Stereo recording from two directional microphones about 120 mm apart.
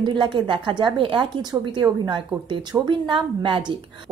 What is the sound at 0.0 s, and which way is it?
A woman's voice, 40° right (ahead or behind).